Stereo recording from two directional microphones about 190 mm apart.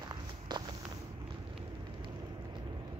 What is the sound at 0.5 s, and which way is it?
Walk, 25° right (ahead or behind).